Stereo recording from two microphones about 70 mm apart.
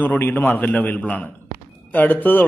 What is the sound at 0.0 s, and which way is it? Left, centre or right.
A man's voice, left.